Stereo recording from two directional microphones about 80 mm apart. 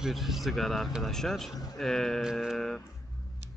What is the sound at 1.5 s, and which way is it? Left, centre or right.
Speech, left.